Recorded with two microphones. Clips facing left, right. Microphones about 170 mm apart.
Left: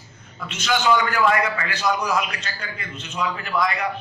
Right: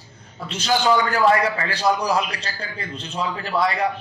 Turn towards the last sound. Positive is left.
turn(degrees=-30)  # may be behind; listen again after turning